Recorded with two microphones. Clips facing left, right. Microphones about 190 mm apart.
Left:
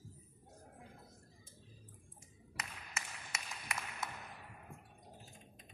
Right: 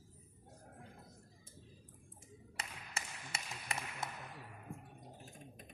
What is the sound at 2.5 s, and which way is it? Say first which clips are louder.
Tap: even; 30° right (ahead or behind).